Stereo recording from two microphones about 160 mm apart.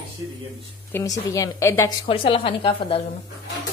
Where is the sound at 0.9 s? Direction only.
20° left (ahead or behind).